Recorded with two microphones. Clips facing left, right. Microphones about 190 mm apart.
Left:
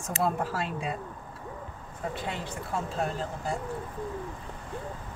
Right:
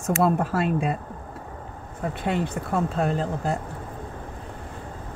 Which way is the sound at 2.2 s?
60° right (ahead or behind).